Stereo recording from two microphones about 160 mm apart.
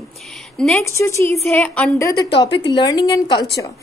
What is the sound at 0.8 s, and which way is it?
A woman's voice, 20° left (ahead or behind).